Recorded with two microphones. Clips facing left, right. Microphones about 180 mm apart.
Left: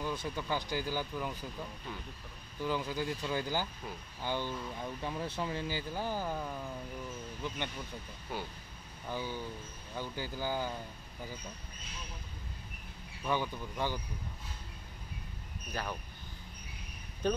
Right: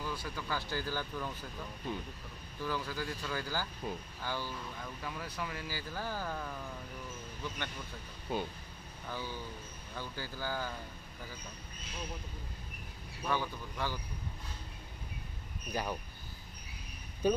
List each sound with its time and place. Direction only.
0.0 s speech: 20° left (ahead or behind)
2.6 s speech: 20° left (ahead or behind)
3.8 s speech: 25° right (ahead or behind)
4.2 s speech: 20° left (ahead or behind)
8.3 s speech: 25° right (ahead or behind)
9.1 s speech: 15° left (ahead or behind)
13.3 s speech: 15° left (ahead or behind)
15.7 s speech: 15° right (ahead or behind)